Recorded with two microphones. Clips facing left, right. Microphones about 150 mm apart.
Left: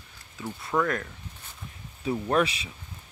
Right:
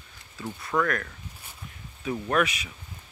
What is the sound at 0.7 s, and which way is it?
Speech, 15° left (ahead or behind).